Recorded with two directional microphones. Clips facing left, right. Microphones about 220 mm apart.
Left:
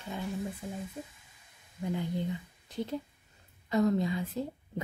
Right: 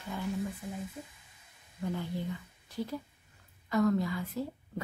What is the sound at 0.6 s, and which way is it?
Speech, 30° left (ahead or behind).